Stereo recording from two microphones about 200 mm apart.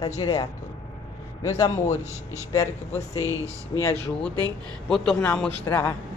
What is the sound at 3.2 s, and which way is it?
Speech, 15° right (ahead or behind).